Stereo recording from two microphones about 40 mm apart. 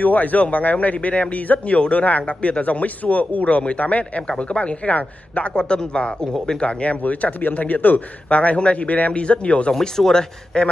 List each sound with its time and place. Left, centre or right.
0.0 s a man's voice: left
5.5 s a man's voice: centre
6.6 s a man's voice: left
9.7 s speech: centre
10.5 s a man's voice: left